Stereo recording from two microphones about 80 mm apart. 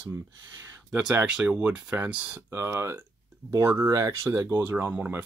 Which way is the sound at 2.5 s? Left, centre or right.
Right.